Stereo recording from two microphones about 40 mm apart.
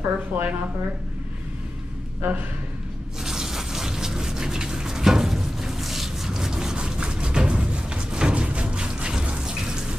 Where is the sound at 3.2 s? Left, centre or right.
Centre.